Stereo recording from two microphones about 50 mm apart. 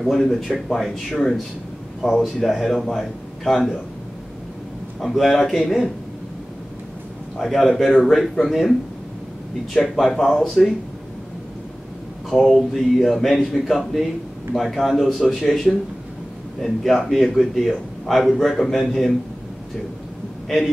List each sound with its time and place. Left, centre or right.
0.0 s a man's voice: centre
2.2 s a man's voice: centre
5.0 s speech: centre
7.3 s a man's voice: centre
9.9 s a man's voice: centre
12.3 s a man's voice: centre
16.6 s a man's voice: centre
20.4 s speech: centre